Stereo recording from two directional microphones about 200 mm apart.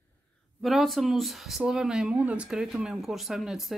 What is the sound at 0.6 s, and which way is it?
Speech, centre (ahead or behind).